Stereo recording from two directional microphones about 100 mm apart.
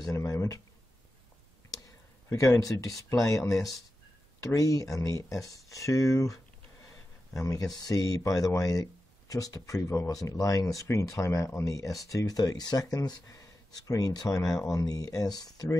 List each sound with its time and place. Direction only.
0.0 s speech: 30° left (ahead or behind)
1.7 s speech: 35° left (ahead or behind)